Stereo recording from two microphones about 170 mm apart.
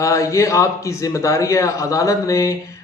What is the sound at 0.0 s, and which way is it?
A man's voice, 20° left (ahead or behind).